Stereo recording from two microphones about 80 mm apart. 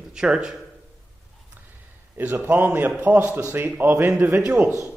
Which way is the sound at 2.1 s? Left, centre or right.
Right.